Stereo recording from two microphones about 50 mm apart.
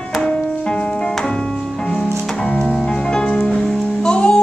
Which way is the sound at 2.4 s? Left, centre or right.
Centre.